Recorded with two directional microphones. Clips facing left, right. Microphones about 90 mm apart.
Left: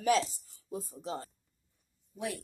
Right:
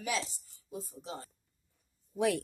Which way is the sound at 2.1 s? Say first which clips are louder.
Right 8 dB; 90° right.